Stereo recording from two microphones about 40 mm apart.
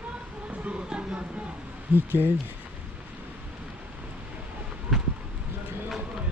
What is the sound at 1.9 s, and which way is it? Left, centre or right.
Speech, right.